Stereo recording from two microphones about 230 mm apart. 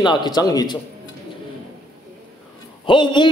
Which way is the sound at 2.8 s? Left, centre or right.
Left.